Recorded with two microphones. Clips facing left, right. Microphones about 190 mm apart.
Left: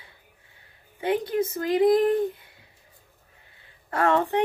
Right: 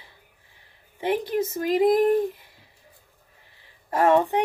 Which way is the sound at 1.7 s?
20° right (ahead or behind).